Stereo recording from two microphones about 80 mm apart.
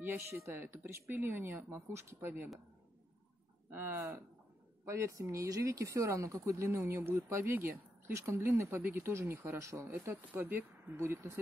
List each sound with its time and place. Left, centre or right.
0.0 s speech: right
3.7 s speech: right
10.3 s speech: right